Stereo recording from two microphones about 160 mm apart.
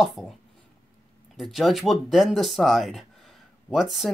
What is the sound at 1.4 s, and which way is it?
Speech, centre (ahead or behind).